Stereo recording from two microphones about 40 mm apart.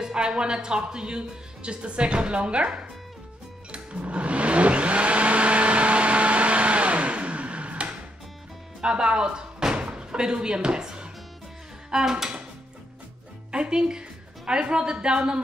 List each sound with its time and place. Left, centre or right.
0.0 s speech: centre
3.7 s vehicle: right
8.8 s speech: right
11.9 s a sound: centre
13.5 s a woman's voice: right